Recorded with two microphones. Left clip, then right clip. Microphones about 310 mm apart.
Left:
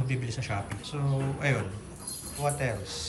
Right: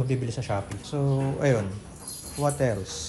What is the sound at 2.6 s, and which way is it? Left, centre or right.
Speech, centre.